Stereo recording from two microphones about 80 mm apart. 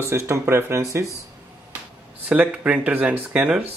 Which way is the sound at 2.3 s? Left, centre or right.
Centre.